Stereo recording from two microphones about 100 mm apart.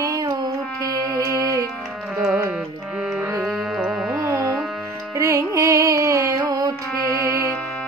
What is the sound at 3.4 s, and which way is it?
Music, 5° right (ahead or behind).